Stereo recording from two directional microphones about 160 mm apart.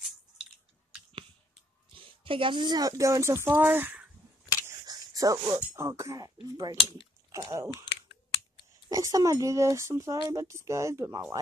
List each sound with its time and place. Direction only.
1.9 s speech: 35° right (ahead or behind); by 4.1 s 10° right (ahead or behind)
4.6 s dog: 20° right (ahead or behind)
5.7 s speech: 20° right (ahead or behind)
8.8 s speech: 20° right (ahead or behind)